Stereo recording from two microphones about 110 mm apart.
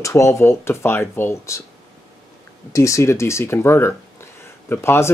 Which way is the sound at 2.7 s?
25° left (ahead or behind).